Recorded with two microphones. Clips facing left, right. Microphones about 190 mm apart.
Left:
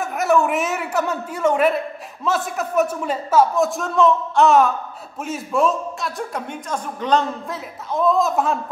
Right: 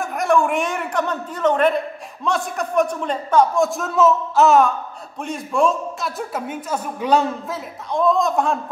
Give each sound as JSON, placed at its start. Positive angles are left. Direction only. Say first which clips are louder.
{"t": 0.0, "sound": "a man's voice", "louder": "even", "side_deg": 5}